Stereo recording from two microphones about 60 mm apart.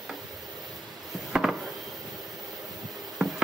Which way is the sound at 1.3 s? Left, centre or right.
Centre.